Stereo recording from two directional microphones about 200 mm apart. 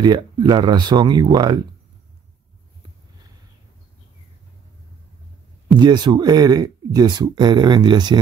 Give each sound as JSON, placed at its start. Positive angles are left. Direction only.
{"t": 0.0, "sound": "speech", "side_deg": -20}
{"t": 5.8, "sound": "speech", "side_deg": -20}